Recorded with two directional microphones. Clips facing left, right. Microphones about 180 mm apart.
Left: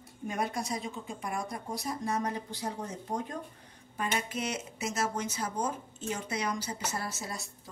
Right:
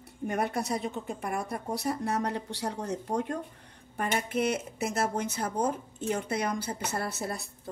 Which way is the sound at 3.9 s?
55° right (ahead or behind).